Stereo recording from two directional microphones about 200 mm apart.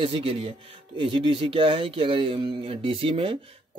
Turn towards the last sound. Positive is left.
turn(degrees=-25)  # may be behind; listen again after turning